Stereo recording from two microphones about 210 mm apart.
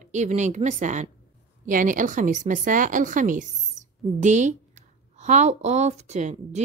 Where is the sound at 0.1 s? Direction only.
35° right (ahead or behind).